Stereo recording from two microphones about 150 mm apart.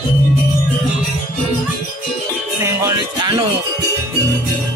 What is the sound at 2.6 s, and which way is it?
Music, 25° right (ahead or behind).